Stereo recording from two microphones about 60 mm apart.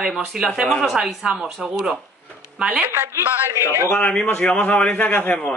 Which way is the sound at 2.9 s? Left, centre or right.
Right.